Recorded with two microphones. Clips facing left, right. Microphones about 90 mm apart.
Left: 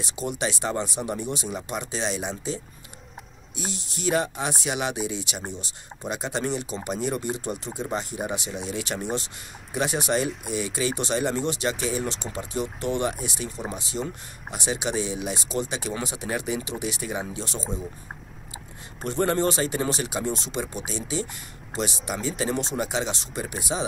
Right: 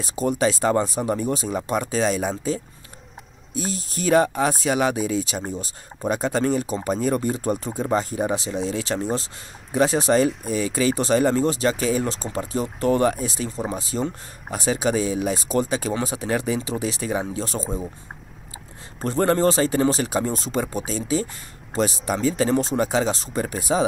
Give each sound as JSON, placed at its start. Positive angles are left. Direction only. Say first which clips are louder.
{"t": 0.0, "sound": "speech", "louder": "right 7 dB", "side_deg": -40}
{"t": 19.0, "sound": "speech", "louder": "right 4 dB", "side_deg": -40}